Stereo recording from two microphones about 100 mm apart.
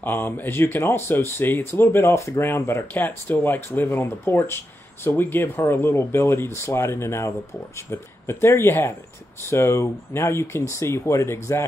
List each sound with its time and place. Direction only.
0.0 s speech: 20° left (ahead or behind)